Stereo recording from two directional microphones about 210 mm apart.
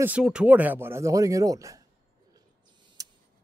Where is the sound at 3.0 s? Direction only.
15° right (ahead or behind).